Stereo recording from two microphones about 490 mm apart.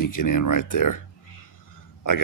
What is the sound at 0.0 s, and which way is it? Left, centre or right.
Speech, left.